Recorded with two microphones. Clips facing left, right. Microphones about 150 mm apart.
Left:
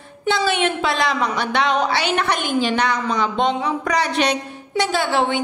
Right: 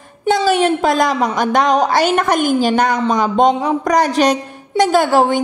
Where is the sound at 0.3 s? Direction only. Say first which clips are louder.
Right 6 dB; 40° right (ahead or behind).